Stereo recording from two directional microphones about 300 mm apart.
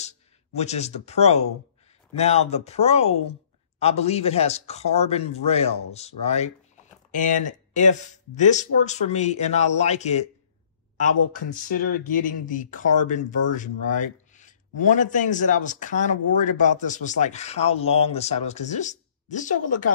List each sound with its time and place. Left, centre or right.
0.6 s speech: left